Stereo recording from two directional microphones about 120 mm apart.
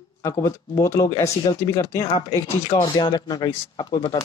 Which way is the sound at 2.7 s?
40° left (ahead or behind).